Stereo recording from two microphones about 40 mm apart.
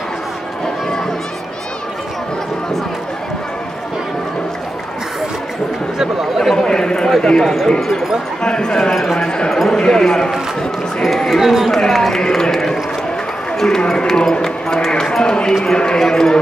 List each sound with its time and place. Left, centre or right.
6.5 s a sound: centre
7.2 s a man's voice: centre
8.9 s speech: centre
9.2 s a man's voice: left
11.2 s speech: centre
11.7 s a man's voice: centre